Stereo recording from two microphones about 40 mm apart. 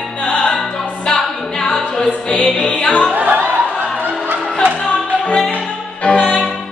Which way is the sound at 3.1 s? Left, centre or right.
Right.